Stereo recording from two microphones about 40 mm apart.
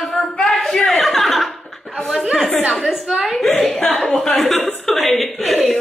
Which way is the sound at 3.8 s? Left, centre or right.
Centre.